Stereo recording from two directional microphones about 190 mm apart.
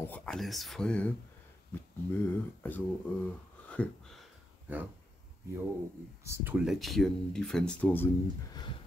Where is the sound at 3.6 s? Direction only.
5° left (ahead or behind).